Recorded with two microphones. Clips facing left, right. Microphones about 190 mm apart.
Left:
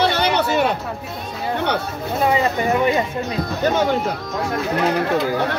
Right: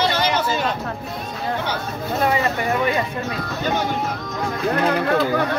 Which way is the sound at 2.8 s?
20° left (ahead or behind).